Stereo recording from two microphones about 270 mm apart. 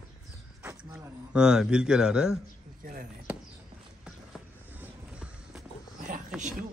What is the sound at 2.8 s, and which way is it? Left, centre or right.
Chop, right.